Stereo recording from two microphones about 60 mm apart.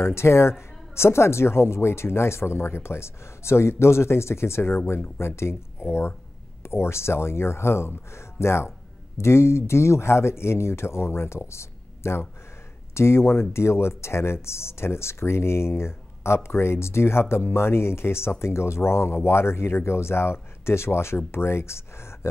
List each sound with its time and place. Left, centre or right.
0.0 s speech: left